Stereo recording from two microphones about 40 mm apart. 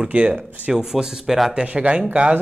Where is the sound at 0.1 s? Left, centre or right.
Right.